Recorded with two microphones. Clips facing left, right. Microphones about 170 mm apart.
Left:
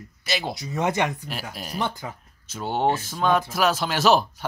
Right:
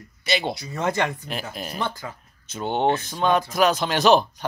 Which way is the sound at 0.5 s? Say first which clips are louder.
Left 1 dB; 15° left (ahead or behind).